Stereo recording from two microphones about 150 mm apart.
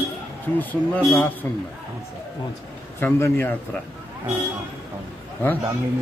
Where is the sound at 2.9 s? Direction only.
15° left (ahead or behind).